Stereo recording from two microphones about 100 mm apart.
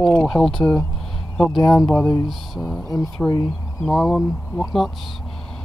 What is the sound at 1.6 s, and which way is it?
Speech, 35° left (ahead or behind).